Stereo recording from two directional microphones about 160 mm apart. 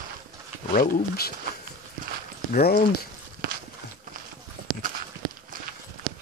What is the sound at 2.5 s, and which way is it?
Speech, 75° left (ahead or behind).